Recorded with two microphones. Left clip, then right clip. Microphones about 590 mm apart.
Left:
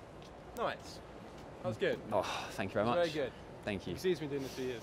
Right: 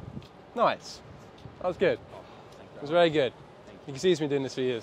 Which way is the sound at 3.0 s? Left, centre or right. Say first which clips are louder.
Right 11 dB; right.